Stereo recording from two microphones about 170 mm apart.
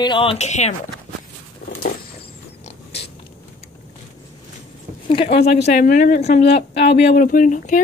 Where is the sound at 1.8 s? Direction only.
65° left (ahead or behind).